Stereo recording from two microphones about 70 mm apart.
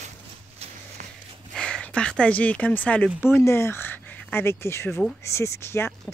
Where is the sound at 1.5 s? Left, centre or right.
Centre.